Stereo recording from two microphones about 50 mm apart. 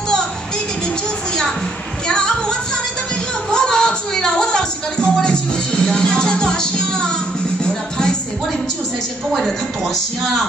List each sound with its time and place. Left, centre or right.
2.0 s music: centre
3.5 s a sound: centre
7.6 s music: centre